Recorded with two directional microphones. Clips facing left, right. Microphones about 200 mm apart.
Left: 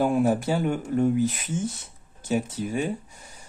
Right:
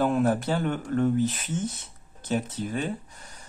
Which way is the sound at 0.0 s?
10° left (ahead or behind).